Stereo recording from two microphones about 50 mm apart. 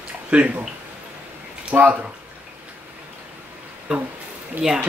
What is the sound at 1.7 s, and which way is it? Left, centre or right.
Speech, right.